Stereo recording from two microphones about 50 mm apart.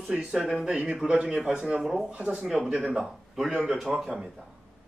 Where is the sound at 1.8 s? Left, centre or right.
Centre.